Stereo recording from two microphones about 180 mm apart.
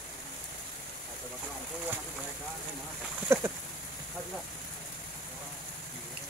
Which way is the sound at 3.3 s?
15° right (ahead or behind).